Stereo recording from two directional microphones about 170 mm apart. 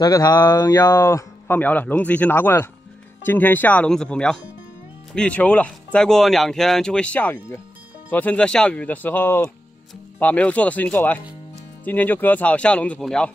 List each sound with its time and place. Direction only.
0.0 s speech: 25° left (ahead or behind); by 13.3 s 5° left (ahead or behind)